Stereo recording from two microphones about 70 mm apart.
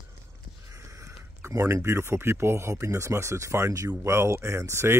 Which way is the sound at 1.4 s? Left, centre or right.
Right.